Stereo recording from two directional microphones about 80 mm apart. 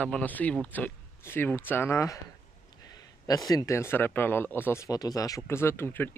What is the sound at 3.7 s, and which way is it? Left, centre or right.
Speech, left.